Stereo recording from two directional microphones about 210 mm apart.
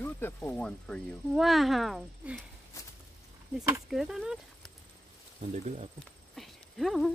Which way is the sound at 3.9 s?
Centre (ahead or behind).